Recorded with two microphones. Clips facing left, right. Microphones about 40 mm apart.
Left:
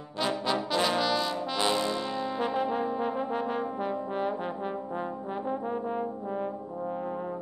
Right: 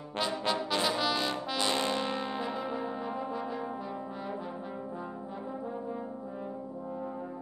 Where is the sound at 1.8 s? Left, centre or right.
Right.